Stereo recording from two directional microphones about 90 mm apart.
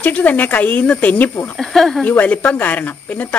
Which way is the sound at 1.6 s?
5° left (ahead or behind).